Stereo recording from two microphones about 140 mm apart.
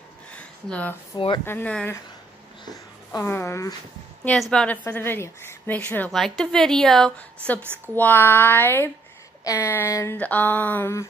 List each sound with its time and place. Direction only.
0.3 s a sound: 10° left (ahead or behind)
1.1 s speech: 35° left (ahead or behind)
1.4 s speech: 15° left (ahead or behind)
3.2 s speech: 15° left (ahead or behind)
4.2 s a woman's voice: 5° left (ahead or behind)
7.6 s speech: 15° right (ahead or behind)
7.9 s speech: 15° left (ahead or behind)